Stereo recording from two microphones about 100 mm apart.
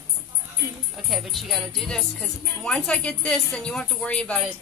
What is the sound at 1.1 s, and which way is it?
A woman's voice, centre (ahead or behind).